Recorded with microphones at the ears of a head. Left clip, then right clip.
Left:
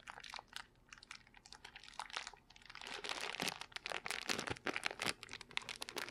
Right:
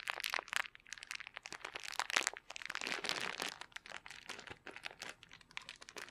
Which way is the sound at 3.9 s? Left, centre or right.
Left.